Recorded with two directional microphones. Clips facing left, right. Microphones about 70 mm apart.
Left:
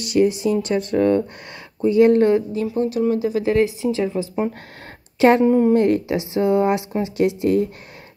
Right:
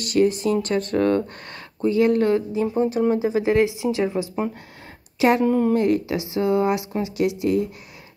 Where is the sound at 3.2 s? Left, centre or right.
Centre.